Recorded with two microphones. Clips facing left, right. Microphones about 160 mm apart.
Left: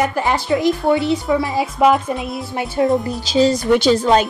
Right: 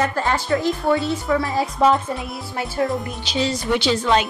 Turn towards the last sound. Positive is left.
turn(degrees=40)  # may be behind; listen again after turning